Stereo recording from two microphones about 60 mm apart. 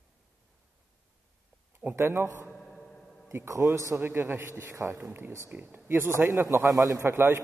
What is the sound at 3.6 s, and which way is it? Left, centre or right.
Speech, right.